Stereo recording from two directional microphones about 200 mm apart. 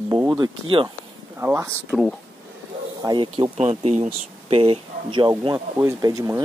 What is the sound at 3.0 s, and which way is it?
Speech, 25° right (ahead or behind).